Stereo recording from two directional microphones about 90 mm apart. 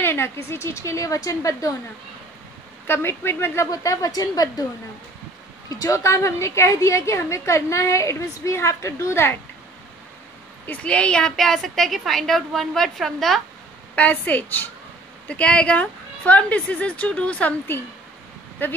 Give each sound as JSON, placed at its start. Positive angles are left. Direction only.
{"t": 0.0, "sound": "a sound", "side_deg": 25}
{"t": 0.5, "sound": "a woman's voice", "side_deg": 30}
{"t": 2.9, "sound": "a woman's voice", "side_deg": 25}
{"t": 3.7, "sound": "a woman's voice", "side_deg": 40}
{"t": 5.7, "sound": "a woman's voice", "side_deg": 40}
{"t": 10.7, "sound": "a woman's voice", "side_deg": 15}
{"t": 13.9, "sound": "a woman's voice", "side_deg": 20}